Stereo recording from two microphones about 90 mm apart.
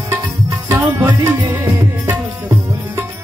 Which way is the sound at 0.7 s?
30° right (ahead or behind).